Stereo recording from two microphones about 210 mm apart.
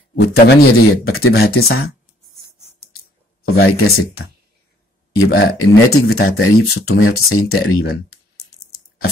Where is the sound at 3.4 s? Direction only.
50° left (ahead or behind).